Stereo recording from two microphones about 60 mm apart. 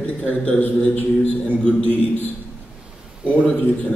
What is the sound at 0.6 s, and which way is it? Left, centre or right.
A man's voice, left.